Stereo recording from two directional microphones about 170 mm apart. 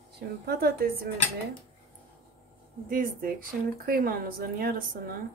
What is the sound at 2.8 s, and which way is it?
Speech, 55° right (ahead or behind).